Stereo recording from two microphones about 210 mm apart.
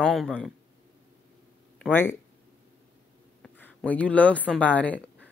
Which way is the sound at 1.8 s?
10° left (ahead or behind).